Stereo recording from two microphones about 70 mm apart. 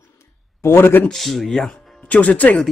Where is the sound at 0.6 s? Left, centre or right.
Left.